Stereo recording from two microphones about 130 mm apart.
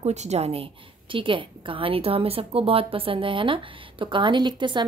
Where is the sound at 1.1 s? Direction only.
40° right (ahead or behind).